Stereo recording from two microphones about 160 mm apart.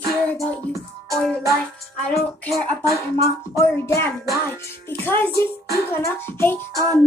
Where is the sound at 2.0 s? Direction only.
5° left (ahead or behind).